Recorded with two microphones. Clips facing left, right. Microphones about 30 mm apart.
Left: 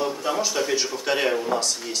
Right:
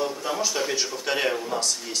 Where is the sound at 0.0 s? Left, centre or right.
Centre.